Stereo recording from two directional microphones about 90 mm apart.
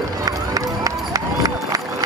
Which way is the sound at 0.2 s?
40° right (ahead or behind).